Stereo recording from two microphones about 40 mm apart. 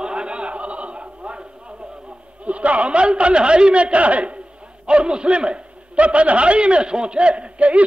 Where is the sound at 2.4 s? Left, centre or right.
Right.